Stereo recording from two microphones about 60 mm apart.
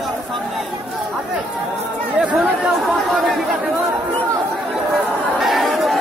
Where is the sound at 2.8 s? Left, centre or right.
Centre.